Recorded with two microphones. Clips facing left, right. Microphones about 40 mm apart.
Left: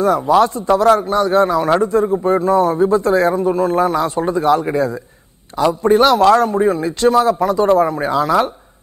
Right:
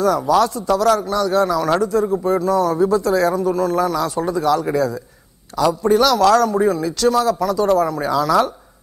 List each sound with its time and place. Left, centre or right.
0.0 s a man's voice: left